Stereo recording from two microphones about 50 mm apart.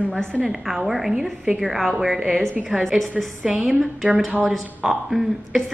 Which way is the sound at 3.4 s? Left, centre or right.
Centre.